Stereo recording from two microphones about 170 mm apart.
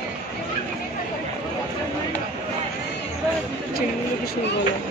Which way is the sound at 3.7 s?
65° left (ahead or behind).